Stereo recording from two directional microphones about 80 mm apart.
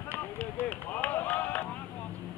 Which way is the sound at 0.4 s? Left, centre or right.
Left.